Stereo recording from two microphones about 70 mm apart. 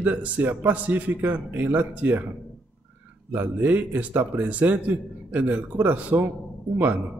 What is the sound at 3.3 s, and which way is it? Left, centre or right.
Speech, right.